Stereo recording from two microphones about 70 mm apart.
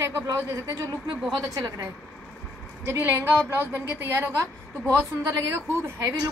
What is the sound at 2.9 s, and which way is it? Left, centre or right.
A woman's voice, right.